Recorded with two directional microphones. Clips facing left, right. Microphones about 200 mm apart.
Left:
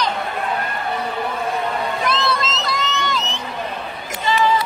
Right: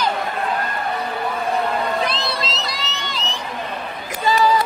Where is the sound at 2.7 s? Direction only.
50° left (ahead or behind).